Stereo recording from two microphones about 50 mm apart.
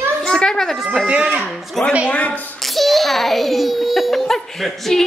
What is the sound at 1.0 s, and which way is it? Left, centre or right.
Speech, right.